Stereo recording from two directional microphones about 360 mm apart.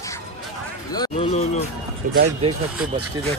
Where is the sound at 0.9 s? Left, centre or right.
Centre.